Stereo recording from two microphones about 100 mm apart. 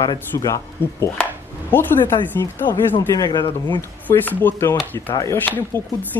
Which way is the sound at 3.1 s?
40° left (ahead or behind).